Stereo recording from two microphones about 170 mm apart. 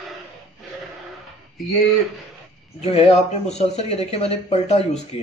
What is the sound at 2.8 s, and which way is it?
Speech, 40° left (ahead or behind).